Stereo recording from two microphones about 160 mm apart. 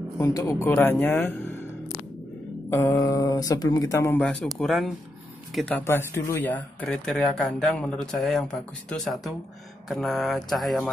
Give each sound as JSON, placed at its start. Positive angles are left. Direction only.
{"t": 0.2, "sound": "speech", "side_deg": 20}
{"t": 2.7, "sound": "speech", "side_deg": 20}
{"t": 4.6, "sound": "speech", "side_deg": 0}
{"t": 5.8, "sound": "speech", "side_deg": 15}